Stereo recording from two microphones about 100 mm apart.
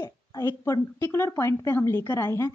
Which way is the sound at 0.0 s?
35° left (ahead or behind).